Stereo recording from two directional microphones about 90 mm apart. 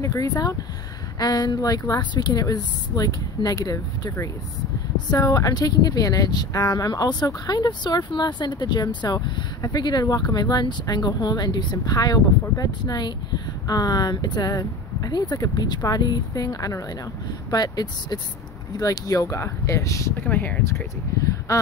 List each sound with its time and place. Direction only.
0.0 s speech: 35° left (ahead or behind)
20.2 s speech: 20° left (ahead or behind)
20.6 s speech: 35° left (ahead or behind)